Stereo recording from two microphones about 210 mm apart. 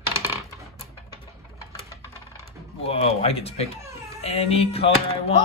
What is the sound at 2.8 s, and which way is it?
Speech, 30° left (ahead or behind).